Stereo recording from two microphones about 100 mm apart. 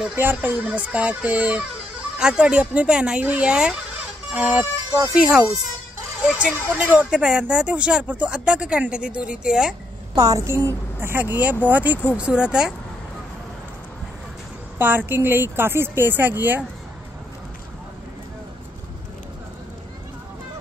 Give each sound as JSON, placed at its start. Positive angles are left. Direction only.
{"t": 0.1, "sound": "speech", "side_deg": -20}
{"t": 10.1, "sound": "speech", "side_deg": -35}
{"t": 14.8, "sound": "speech", "side_deg": -20}